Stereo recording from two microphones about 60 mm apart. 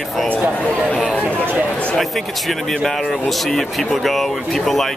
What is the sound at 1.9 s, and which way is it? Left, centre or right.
Speech, centre.